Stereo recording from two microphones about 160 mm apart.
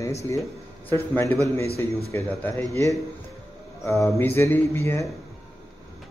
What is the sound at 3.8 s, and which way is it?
A man's voice, 20° left (ahead or behind).